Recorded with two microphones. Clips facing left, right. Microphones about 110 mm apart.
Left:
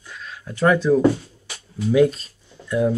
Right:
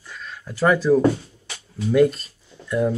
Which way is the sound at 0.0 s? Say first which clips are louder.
Even; centre (ahead or behind).